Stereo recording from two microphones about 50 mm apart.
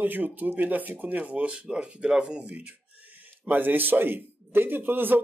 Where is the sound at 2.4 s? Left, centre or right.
Right.